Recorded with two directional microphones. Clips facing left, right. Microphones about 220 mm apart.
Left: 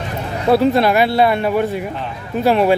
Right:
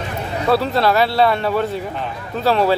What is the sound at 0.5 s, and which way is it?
A man's voice, 20° left (ahead or behind).